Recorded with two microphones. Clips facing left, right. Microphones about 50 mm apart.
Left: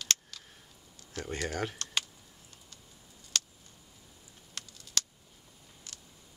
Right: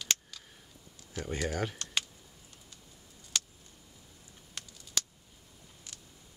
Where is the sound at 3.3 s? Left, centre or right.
Centre.